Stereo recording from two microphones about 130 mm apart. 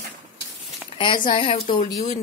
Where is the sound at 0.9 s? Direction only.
40° left (ahead or behind).